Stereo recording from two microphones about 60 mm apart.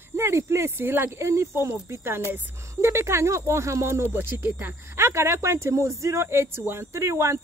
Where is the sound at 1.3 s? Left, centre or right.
Right.